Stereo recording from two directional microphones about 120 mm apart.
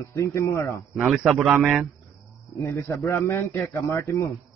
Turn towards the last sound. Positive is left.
turn(degrees=25)  # may be behind; listen again after turning